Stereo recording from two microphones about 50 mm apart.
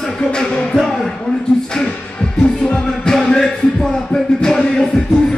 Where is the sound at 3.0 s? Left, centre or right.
Centre.